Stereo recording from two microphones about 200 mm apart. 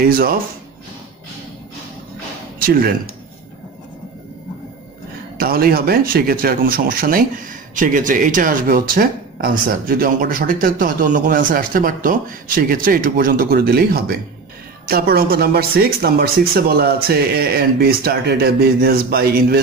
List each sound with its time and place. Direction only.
0.0 s speech: 45° right (ahead or behind)
5.4 s speech: 50° right (ahead or behind)